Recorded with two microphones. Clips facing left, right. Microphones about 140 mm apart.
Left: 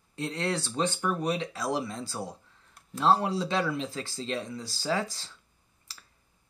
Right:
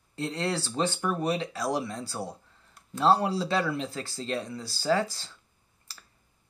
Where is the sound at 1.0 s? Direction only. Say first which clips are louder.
Right 1 dB; 5° right (ahead or behind).